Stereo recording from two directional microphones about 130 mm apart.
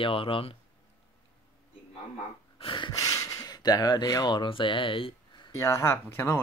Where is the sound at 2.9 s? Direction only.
25° left (ahead or behind); by 5.5 s 40° left (ahead or behind).